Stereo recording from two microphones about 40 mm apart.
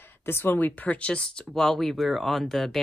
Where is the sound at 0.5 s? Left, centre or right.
Left.